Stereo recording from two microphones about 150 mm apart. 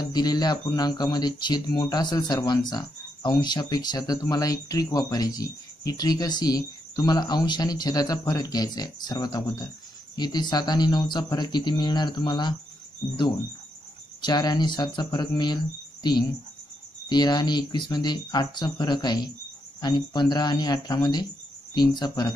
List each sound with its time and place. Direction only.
0.0 s speech: 25° left (ahead or behind)
14.2 s speech: 25° left (ahead or behind)